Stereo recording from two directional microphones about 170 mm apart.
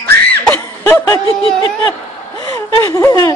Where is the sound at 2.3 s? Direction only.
20° left (ahead or behind).